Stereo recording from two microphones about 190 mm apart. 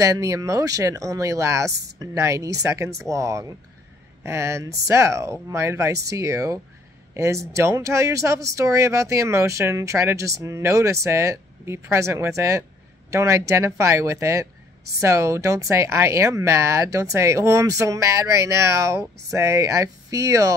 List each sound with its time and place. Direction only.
0.0 s speech: 15° right (ahead or behind)
1.7 s speech: 60° right (ahead or behind)
2.0 s speech: 15° right (ahead or behind)